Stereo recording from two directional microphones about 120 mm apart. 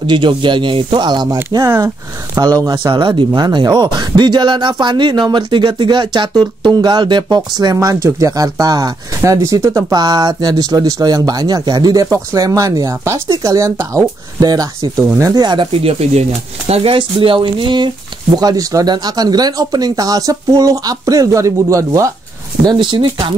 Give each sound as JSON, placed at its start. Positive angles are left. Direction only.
{"t": 0.0, "sound": "speech", "side_deg": -40}
{"t": 15.8, "sound": "speech", "side_deg": -60}
{"t": 22.7, "sound": "speech", "side_deg": -40}